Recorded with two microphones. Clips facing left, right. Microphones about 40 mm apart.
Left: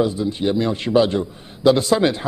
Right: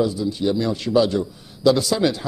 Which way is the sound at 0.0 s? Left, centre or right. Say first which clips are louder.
Left 1 dB; left.